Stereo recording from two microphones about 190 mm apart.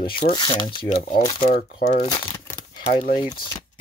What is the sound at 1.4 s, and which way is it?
Speech, 50° left (ahead or behind).